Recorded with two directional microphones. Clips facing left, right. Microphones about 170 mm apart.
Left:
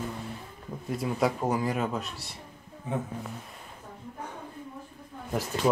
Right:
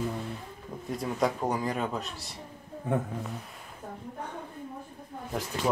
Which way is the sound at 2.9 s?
55° right (ahead or behind).